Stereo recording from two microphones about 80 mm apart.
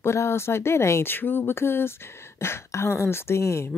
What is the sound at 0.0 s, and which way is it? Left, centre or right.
Speech, left.